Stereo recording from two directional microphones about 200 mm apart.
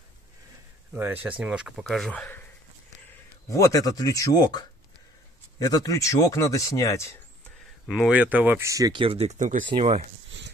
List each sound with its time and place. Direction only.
0.9 s speech: 10° right (ahead or behind); by 2.4 s 5° left (ahead or behind)
3.4 s speech: 15° left (ahead or behind)
8.1 s speech: 5° right (ahead or behind); by 9.7 s 40° right (ahead or behind)
9.7 s speech: 25° right (ahead or behind)